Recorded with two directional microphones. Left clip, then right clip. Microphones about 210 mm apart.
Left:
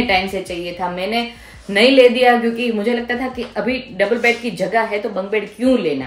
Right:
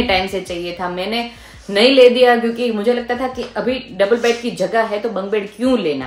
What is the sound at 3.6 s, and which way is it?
Speech, 15° right (ahead or behind).